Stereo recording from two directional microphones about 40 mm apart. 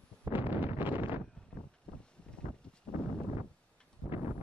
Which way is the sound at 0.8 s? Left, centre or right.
Right.